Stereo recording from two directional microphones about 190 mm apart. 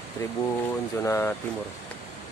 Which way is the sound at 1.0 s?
15° left (ahead or behind).